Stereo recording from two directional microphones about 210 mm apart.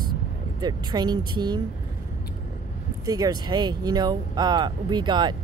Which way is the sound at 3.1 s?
20° right (ahead or behind).